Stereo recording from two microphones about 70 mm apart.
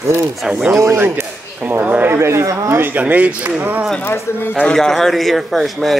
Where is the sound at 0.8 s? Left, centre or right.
Right.